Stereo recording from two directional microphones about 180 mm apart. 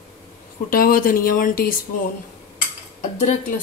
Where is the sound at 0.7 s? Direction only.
50° left (ahead or behind).